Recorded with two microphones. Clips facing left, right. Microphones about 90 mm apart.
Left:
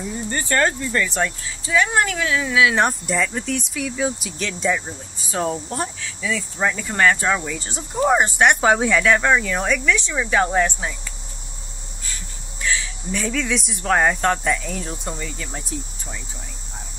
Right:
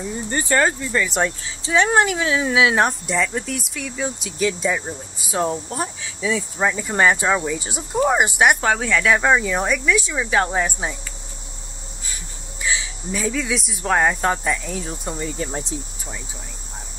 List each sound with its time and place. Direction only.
0.3 s speech: 15° right (ahead or behind)
1.1 s speech: 25° right (ahead or behind)
2.7 s speech: centre (ahead or behind)
5.9 s speech: 20° right (ahead or behind)
7.9 s speech: centre (ahead or behind)
8.5 s speech: 10° left (ahead or behind)
9.0 s speech: 10° right (ahead or behind)
12.6 s a sound: 15° right (ahead or behind)
13.1 s speech: 10° right (ahead or behind)
15.1 s speech: 30° right (ahead or behind)